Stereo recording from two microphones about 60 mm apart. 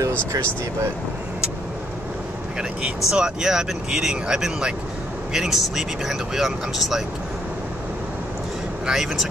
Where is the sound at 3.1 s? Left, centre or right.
Centre.